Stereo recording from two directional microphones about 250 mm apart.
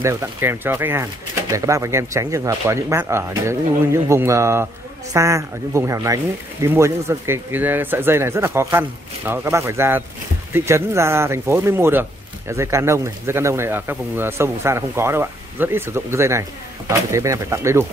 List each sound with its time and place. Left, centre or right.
0.0 s speech: centre